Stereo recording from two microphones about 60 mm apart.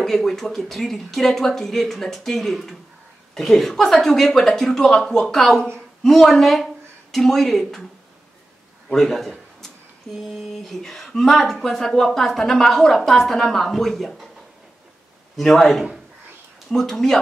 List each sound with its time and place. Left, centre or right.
0.0 s speech: centre
8.9 s a man's voice: centre
15.3 s speech: centre